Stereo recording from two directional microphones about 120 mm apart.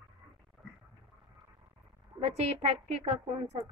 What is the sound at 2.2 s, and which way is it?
Speech, 55° right (ahead or behind).